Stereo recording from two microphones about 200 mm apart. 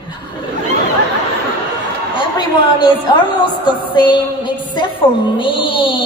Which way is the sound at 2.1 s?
20° left (ahead or behind).